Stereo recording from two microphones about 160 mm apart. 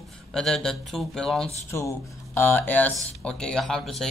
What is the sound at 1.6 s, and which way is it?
Speech, 15° left (ahead or behind).